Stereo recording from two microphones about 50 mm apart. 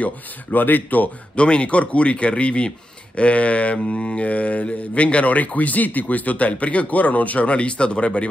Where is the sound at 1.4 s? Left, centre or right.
Left.